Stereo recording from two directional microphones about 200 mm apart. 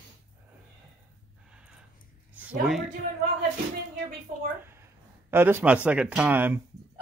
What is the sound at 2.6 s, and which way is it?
Speech, centre (ahead or behind).